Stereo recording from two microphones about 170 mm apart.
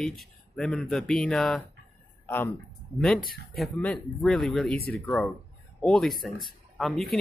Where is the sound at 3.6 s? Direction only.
5° left (ahead or behind).